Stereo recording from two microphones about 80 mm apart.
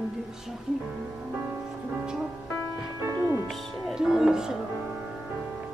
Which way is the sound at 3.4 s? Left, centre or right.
Centre.